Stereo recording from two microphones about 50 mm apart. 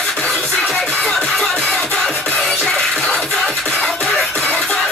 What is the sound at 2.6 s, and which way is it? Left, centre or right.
Scratching, centre.